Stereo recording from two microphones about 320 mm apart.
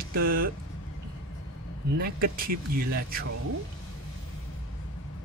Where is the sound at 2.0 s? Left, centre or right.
Right.